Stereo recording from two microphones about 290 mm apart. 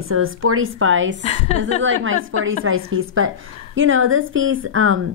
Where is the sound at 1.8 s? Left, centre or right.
Right.